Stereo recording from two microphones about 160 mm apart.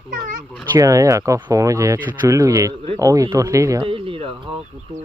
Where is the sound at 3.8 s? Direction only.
35° right (ahead or behind).